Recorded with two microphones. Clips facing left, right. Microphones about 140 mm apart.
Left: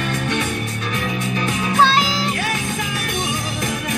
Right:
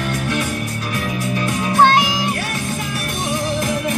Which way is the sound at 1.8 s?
15° right (ahead or behind).